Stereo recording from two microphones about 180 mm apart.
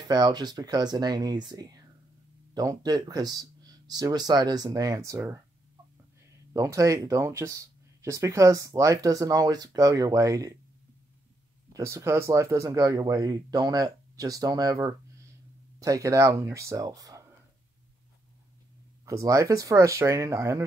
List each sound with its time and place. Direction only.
0.1 s speech: 25° right (ahead or behind)
6.5 s speech: 15° right (ahead or behind)
11.7 s speech: 15° right (ahead or behind)
19.0 s speech: 20° right (ahead or behind)